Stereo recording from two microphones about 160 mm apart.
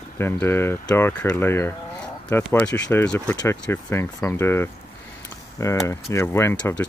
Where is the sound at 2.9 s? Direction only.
10° left (ahead or behind).